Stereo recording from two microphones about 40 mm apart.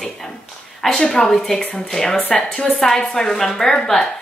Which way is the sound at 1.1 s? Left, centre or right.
Centre.